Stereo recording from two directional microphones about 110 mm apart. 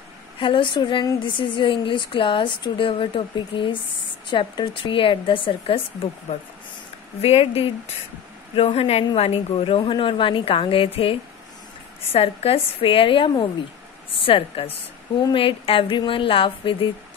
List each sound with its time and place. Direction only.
0.4 s a woman's voice: 50° left (ahead or behind)
7.2 s a woman's voice: 65° left (ahead or behind)
9.8 s a woman's voice: 50° left (ahead or behind)